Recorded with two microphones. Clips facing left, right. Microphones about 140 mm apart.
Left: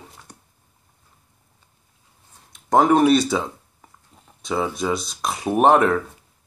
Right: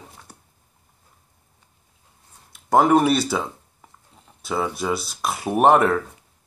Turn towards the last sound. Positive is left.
turn(degrees=-5)  # may be behind; listen again after turning